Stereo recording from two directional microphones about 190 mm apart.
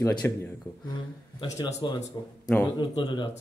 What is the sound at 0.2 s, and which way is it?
Speech, 10° left (ahead or behind).